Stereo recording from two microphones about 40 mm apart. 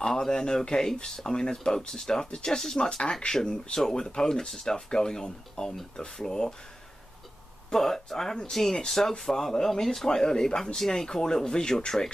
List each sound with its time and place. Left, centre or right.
0.0 s speech: centre
7.7 s speech: centre